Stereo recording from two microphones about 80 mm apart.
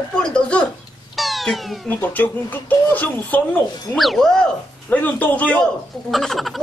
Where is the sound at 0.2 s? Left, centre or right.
Centre.